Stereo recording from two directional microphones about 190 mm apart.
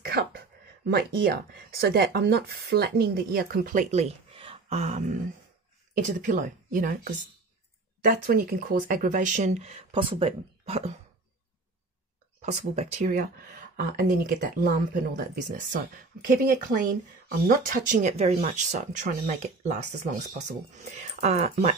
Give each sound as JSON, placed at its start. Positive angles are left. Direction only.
{"t": 0.0, "sound": "a sound", "side_deg": -55}
{"t": 1.5, "sound": "speech", "side_deg": -55}
{"t": 12.4, "sound": "speech", "side_deg": -40}
{"t": 13.2, "sound": "speech", "side_deg": -55}